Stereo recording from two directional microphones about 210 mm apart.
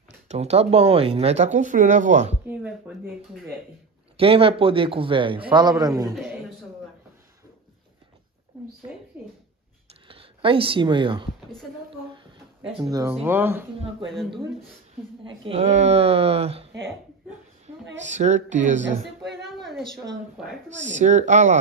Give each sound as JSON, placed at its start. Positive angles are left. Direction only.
{"t": 0.3, "sound": "speech", "side_deg": -30}
{"t": 2.4, "sound": "speech", "side_deg": -5}
{"t": 4.2, "sound": "speech", "side_deg": -25}
{"t": 9.1, "sound": "a sound", "side_deg": -10}
{"t": 10.0, "sound": "speech", "side_deg": -25}
{"t": 12.7, "sound": "speech", "side_deg": -15}
{"t": 15.2, "sound": "speech", "side_deg": -25}
{"t": 18.0, "sound": "speech", "side_deg": -35}
{"t": 19.2, "sound": "a woman's voice", "side_deg": 0}
{"t": 20.8, "sound": "speech", "side_deg": -35}